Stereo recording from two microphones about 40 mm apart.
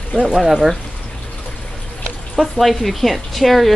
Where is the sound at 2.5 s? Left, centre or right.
Centre.